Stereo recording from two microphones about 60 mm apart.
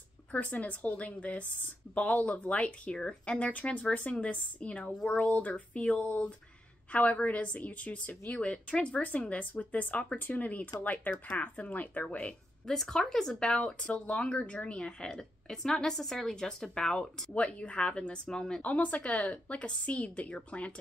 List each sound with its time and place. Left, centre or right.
0.3 s a woman's voice: left
12.6 s speech: centre
18.6 s a woman's voice: left